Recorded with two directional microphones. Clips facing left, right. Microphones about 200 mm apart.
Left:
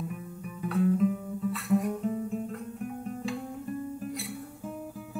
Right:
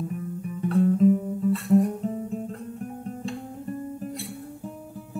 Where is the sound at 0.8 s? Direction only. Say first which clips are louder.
Right 6 dB; 35° right (ahead or behind).